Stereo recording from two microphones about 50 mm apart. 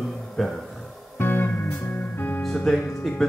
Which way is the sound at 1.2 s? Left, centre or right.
Left.